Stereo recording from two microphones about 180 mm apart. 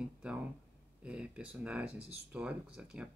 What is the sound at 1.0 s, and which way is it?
Speech, 5° right (ahead or behind).